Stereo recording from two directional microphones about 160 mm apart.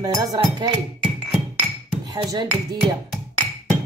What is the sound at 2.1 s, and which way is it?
Speech, 25° right (ahead or behind).